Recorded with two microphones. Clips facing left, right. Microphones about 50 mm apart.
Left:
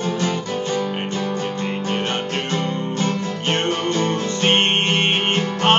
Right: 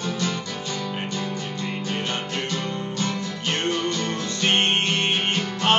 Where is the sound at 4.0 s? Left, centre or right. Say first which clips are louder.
Left 6 dB; left.